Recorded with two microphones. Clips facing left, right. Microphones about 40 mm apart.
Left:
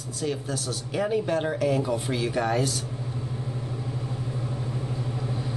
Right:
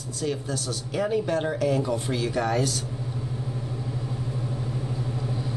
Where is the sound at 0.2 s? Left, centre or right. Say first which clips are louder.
Even; centre.